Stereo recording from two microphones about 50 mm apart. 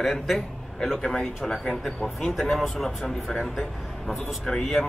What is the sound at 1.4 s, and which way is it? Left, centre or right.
Speech, centre.